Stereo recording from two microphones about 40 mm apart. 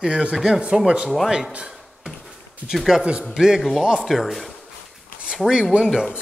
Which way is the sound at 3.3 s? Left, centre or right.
Centre.